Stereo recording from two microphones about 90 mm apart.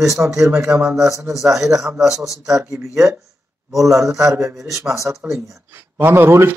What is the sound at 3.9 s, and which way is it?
A man's voice, 35° right (ahead or behind).